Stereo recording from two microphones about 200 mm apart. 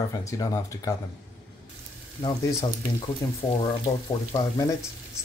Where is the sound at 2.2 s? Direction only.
20° left (ahead or behind).